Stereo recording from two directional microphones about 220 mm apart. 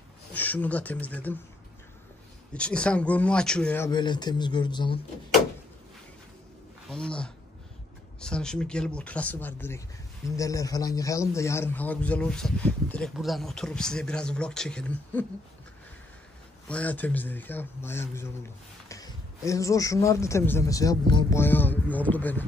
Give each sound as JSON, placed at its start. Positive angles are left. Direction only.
{"t": 0.3, "sound": "a man's voice", "side_deg": 5}
{"t": 2.5, "sound": "speech", "side_deg": 5}
{"t": 3.9, "sound": "speech", "side_deg": 20}
{"t": 6.9, "sound": "speech", "side_deg": 5}
{"t": 16.6, "sound": "a man's voice", "side_deg": 5}
{"t": 21.4, "sound": "a man's voice", "side_deg": 10}